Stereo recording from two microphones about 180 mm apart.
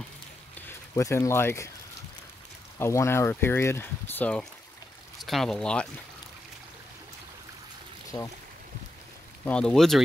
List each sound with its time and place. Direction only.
0.6 s speech: 15° left (ahead or behind)
2.8 s speech: 15° left (ahead or behind)
8.1 s speech: 20° left (ahead or behind)
9.4 s speech: 5° left (ahead or behind)